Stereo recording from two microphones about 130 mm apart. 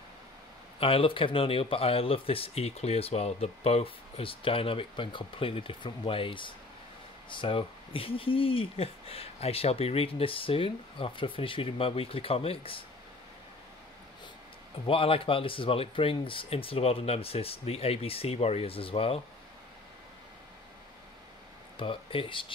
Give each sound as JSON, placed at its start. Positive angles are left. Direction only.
{"t": 0.7, "sound": "speech", "side_deg": 45}
{"t": 14.9, "sound": "speech", "side_deg": 45}
{"t": 21.7, "sound": "speech", "side_deg": 45}